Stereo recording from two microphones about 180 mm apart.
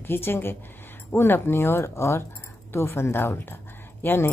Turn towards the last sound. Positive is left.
turn(degrees=10)  # may be behind; listen again after turning